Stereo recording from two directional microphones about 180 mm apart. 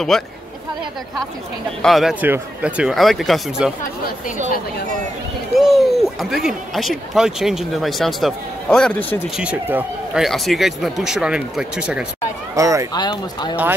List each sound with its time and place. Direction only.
0.1 s speech: centre (ahead or behind)
1.8 s speech: centre (ahead or behind)
5.6 s speech: centre (ahead or behind)
9.4 s speech: 10° right (ahead or behind)
12.5 s speech: 15° right (ahead or behind)
12.9 s speech: 25° left (ahead or behind)